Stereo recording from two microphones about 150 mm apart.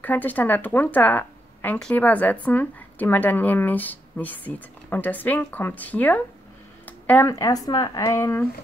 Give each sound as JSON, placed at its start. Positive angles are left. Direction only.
{"t": 0.0, "sound": "speech", "side_deg": 10}